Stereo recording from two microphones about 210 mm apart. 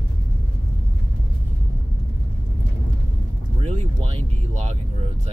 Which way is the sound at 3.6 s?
30° right (ahead or behind).